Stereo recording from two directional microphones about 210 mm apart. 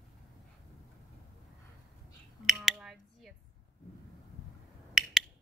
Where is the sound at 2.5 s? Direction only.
Centre (ahead or behind).